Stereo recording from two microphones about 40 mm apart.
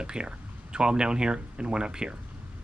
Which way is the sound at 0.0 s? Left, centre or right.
Right.